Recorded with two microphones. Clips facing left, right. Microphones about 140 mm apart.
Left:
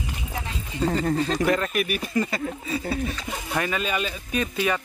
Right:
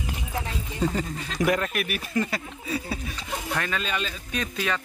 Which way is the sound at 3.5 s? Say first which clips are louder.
Left 4 dB; 10° left (ahead or behind).